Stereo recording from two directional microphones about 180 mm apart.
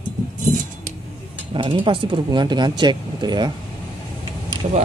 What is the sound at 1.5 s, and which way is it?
Speech, 30° right (ahead or behind).